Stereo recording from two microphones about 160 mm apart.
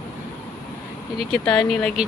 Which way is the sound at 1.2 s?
5° left (ahead or behind).